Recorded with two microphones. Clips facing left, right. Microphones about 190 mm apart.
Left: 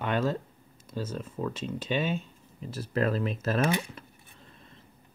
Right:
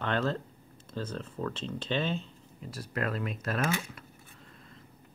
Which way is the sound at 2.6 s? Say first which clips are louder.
Left 6 dB; 25° left (ahead or behind).